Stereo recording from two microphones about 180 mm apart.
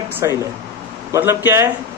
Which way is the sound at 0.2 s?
20° right (ahead or behind).